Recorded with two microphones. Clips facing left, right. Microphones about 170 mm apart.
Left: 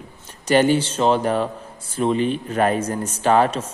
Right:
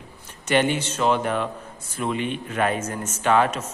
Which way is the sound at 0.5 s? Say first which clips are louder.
Left 5 dB; 35° left (ahead or behind).